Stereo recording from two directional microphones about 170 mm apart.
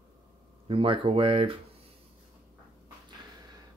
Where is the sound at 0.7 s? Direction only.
30° right (ahead or behind).